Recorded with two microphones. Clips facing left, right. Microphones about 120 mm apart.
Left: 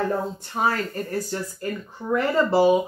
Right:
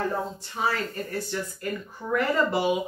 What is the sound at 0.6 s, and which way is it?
Speech, 45° left (ahead or behind).